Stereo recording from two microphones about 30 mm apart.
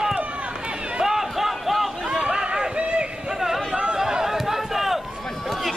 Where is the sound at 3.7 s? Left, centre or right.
Right.